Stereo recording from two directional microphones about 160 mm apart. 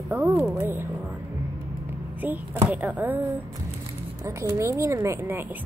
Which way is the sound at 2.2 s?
10° right (ahead or behind).